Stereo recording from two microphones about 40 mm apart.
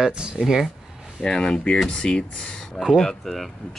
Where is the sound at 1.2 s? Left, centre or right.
Centre.